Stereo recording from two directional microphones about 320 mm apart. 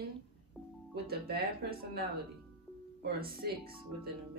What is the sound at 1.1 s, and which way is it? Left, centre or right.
Speech, right.